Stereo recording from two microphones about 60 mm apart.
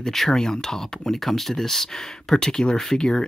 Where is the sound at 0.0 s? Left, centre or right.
Centre.